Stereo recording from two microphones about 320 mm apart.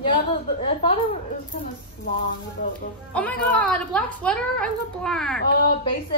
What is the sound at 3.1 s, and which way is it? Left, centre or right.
A woman's voice, centre.